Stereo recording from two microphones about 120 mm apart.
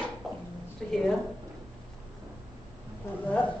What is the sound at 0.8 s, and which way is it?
Speech, 5° left (ahead or behind).